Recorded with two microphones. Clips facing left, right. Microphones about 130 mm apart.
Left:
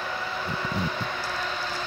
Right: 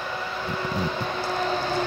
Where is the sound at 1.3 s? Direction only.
35° right (ahead or behind).